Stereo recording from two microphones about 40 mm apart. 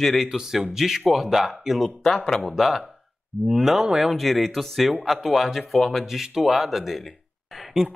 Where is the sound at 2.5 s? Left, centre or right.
Centre.